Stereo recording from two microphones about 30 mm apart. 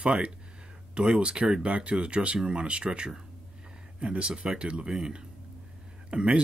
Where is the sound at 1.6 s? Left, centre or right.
Right.